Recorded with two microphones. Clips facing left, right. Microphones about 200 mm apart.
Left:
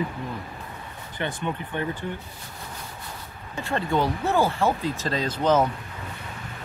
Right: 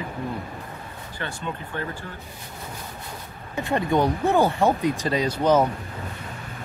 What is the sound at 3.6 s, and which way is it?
Speech, 15° right (ahead or behind).